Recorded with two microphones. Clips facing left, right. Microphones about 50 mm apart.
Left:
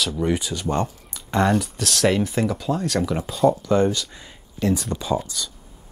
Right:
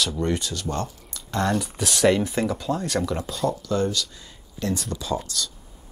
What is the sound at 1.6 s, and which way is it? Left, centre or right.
Speech, centre.